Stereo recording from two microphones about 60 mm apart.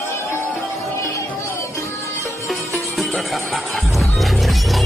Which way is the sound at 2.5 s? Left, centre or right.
Centre.